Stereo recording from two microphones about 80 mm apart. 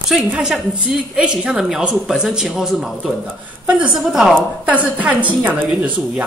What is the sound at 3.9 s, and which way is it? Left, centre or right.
Speech, centre.